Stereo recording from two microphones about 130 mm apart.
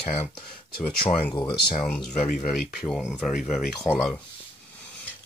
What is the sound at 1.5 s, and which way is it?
Speech, 35° left (ahead or behind).